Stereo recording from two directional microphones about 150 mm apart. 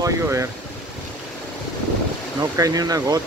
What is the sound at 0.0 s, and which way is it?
Speech, 20° right (ahead or behind).